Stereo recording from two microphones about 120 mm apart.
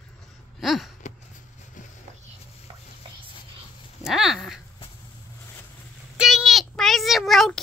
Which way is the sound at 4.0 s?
5° right (ahead or behind).